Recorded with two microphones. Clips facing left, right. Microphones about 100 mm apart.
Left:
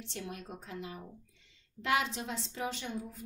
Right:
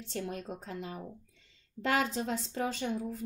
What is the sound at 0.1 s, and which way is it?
A woman's voice, 45° right (ahead or behind).